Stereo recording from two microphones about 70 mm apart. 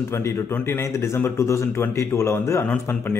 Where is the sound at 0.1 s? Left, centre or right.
Left.